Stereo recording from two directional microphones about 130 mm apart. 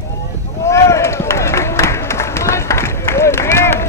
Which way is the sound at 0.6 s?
20° left (ahead or behind).